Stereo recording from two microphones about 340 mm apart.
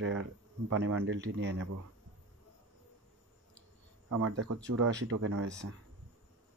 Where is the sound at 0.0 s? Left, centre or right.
Right.